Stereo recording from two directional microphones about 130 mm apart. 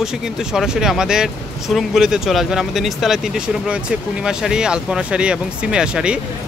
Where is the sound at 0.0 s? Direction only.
5° right (ahead or behind).